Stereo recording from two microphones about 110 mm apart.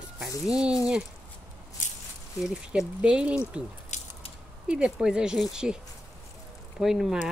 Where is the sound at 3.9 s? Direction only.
90° left.